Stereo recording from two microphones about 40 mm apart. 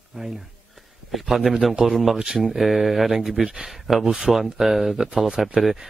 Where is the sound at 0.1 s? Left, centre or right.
Centre.